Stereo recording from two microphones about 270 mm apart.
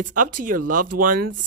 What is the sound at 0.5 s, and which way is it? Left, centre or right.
Speech, right.